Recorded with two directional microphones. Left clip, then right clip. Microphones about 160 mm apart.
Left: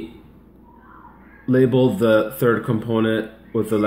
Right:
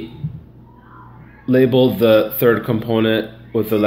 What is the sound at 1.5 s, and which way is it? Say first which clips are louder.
Speech: right 3 dB; 45° left (ahead or behind).